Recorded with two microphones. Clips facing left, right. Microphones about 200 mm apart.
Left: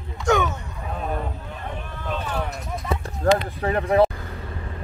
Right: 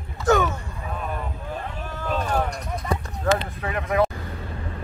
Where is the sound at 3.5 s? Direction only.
35° left (ahead or behind).